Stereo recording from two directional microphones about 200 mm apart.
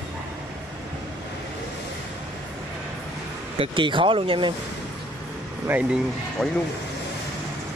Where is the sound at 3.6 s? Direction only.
25° right (ahead or behind).